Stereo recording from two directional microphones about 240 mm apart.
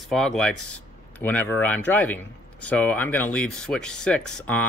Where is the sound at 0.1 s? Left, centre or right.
Centre.